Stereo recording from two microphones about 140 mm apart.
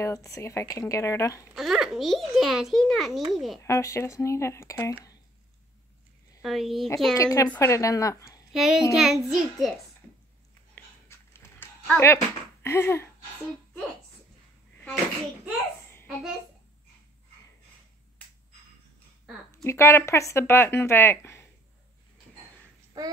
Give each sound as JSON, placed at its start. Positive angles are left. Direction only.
{"t": 0.0, "sound": "speech", "side_deg": 20}
{"t": 1.5, "sound": "a child's voice", "side_deg": -5}
{"t": 3.6, "sound": "speech", "side_deg": 20}
{"t": 6.4, "sound": "a child's voice", "side_deg": 0}
{"t": 7.2, "sound": "speech", "side_deg": 25}
{"t": 8.5, "sound": "a child's voice", "side_deg": -5}
{"t": 10.7, "sound": "a sound", "side_deg": 15}
{"t": 19.5, "sound": "speech", "side_deg": 20}
{"t": 23.0, "sound": "child singing", "side_deg": -25}